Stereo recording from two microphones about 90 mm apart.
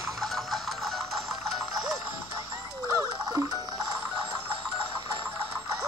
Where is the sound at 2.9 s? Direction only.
40° right (ahead or behind).